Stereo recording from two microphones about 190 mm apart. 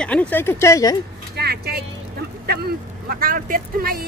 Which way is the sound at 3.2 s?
45° right (ahead or behind).